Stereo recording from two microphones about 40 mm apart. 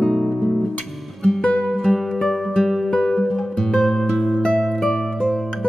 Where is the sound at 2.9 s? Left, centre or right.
Centre.